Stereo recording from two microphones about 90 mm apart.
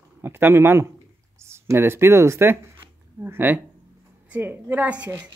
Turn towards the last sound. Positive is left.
turn(degrees=-15)  # may be behind; listen again after turning